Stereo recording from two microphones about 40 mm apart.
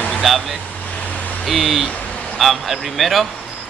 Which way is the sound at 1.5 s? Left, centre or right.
Centre.